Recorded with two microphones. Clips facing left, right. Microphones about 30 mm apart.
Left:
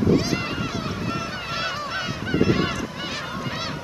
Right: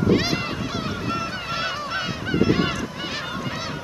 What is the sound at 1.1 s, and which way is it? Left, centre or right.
Goose, centre.